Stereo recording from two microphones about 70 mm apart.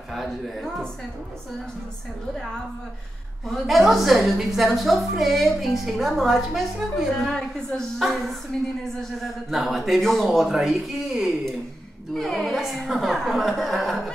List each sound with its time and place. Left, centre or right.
0.1 s a woman's voice: centre
3.4 s a woman's voice: centre
9.5 s a woman's voice: centre